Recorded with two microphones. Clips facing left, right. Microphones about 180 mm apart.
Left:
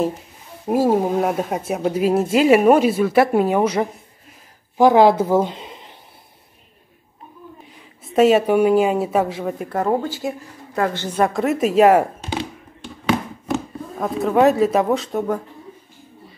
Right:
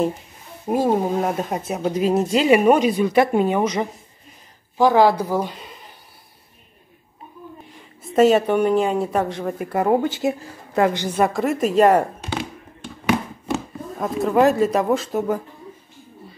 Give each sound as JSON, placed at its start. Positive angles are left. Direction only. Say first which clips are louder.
{"t": 0.7, "sound": "speech", "louder": "left 2 dB", "side_deg": 5}
{"t": 7.7, "sound": "speech", "louder": "even", "side_deg": 0}
{"t": 9.7, "sound": "speech", "louder": "right 2 dB", "side_deg": -10}
{"t": 10.0, "sound": "a woman's voice", "louder": "right 4 dB", "side_deg": -20}
{"t": 11.1, "sound": "speech", "louder": "left 3 dB", "side_deg": 0}
{"t": 13.9, "sound": "speech", "louder": "left 1 dB", "side_deg": 0}